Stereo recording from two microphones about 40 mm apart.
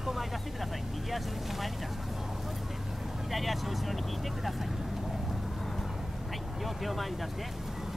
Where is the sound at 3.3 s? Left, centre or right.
Centre.